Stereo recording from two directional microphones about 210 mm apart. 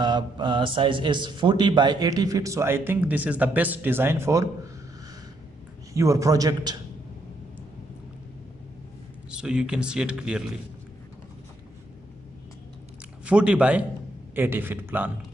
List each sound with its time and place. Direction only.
0.0 s speech: 20° right (ahead or behind)
5.9 s speech: 15° right (ahead or behind)
9.3 s speech: 5° right (ahead or behind)
13.2 s speech: 5° right (ahead or behind)